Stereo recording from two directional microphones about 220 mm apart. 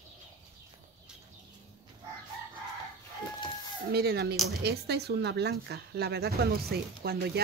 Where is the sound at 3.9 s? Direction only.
45° right (ahead or behind).